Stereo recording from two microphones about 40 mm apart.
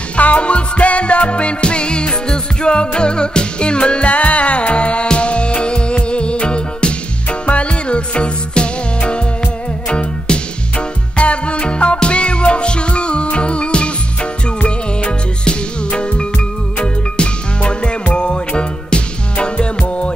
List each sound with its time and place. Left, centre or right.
0.1 s music: left